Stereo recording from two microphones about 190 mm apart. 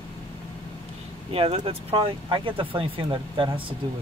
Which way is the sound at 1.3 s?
30° right (ahead or behind).